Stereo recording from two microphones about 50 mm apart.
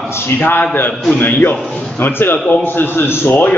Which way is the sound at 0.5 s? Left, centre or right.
Left.